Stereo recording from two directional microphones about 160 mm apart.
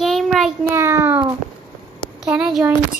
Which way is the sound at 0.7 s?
15° right (ahead or behind).